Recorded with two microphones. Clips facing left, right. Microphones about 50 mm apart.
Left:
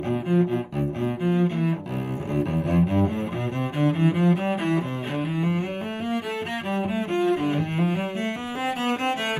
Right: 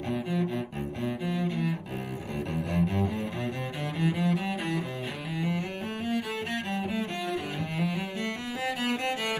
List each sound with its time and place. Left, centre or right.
0.1 s cello: left
8.6 s music: left